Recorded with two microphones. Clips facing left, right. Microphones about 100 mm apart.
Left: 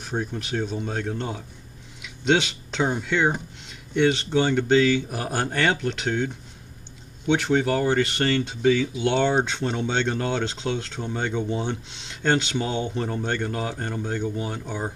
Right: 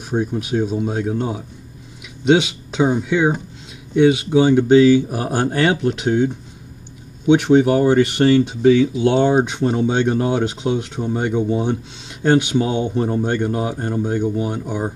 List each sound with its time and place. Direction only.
0.1 s speech: 10° right (ahead or behind)